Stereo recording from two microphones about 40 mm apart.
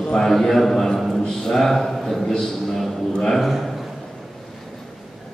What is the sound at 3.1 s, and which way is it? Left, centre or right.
Speech, centre.